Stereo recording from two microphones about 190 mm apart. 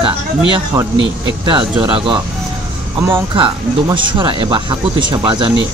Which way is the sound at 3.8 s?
25° right (ahead or behind).